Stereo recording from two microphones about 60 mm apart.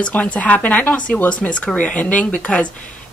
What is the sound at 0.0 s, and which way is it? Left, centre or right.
Speech, left.